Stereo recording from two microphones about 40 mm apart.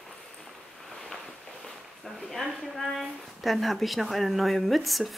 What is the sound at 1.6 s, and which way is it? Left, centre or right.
Speech, centre.